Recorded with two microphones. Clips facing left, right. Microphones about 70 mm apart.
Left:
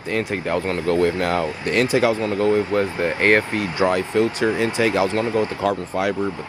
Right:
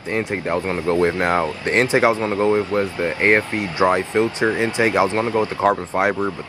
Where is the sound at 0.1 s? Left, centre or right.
Right.